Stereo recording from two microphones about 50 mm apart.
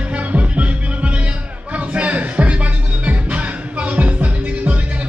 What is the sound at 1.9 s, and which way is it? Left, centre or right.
Music, right.